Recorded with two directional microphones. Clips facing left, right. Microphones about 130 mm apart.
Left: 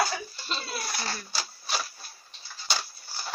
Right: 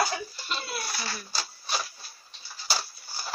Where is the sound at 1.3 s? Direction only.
Centre (ahead or behind).